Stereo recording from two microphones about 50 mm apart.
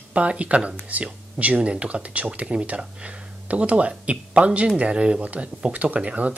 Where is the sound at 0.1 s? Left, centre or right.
Right.